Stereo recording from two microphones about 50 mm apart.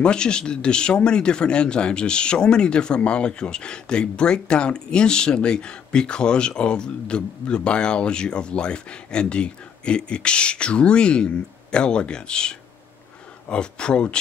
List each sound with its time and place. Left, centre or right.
0.0 s speech: centre